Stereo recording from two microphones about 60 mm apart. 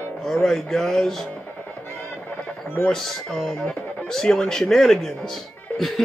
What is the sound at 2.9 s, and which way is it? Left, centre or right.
Speech, centre.